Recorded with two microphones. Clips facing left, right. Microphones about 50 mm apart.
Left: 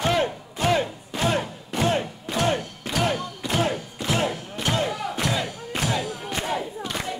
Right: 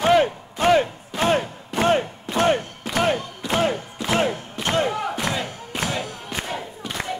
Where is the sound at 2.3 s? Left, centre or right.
Right.